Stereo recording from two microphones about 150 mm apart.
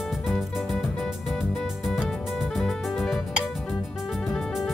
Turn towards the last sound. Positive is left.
turn(degrees=0)  # may be behind; listen again after turning